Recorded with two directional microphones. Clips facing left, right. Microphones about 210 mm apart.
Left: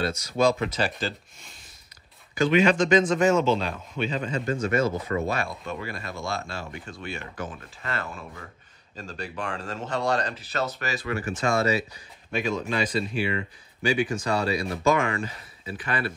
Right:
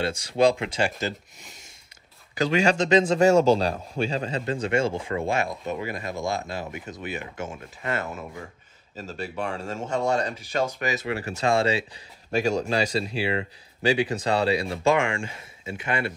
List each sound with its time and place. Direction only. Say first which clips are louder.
0.0 s speech: right 2 dB; 30° right (ahead or behind)
2.3 s speech: left 2 dB; 30° right (ahead or behind)
3.3 s speech: right 4 dB; 40° right (ahead or behind)
12.3 s speech: right 4 dB; 40° right (ahead or behind)
13.8 s speech: right 2 dB; 30° right (ahead or behind)